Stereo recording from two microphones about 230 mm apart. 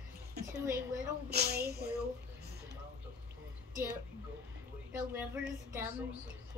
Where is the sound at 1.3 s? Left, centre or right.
Right.